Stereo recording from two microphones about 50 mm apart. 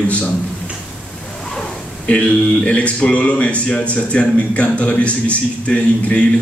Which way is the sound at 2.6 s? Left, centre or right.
Left.